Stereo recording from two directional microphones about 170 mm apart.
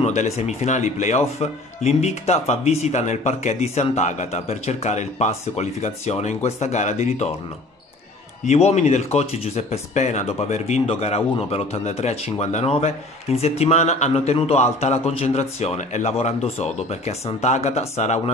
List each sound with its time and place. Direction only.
0.0 s speech: 40° left (ahead or behind)
8.5 s speech: 40° left (ahead or behind)